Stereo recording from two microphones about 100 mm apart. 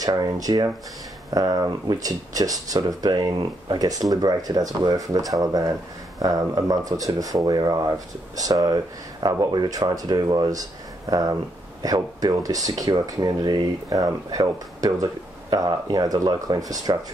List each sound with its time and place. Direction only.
0.0 s speech: 40° right (ahead or behind)